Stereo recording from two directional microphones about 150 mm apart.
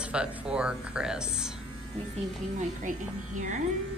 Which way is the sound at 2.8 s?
55° right (ahead or behind).